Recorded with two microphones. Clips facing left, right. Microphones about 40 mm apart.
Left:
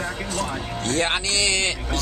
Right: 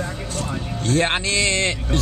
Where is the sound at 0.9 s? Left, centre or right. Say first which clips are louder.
Right 3 dB; centre.